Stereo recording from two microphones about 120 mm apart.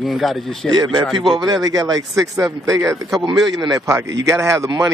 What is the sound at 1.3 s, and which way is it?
Speech, 35° right (ahead or behind).